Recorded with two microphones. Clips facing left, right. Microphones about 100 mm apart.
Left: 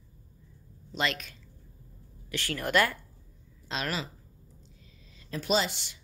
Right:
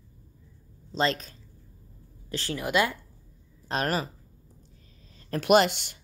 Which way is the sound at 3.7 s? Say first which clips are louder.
Right 6 dB; 45° right (ahead or behind).